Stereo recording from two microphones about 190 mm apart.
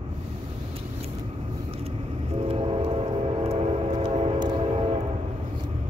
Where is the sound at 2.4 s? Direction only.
30° right (ahead or behind).